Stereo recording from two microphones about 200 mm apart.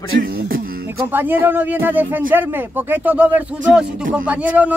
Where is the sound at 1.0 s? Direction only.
10° right (ahead or behind).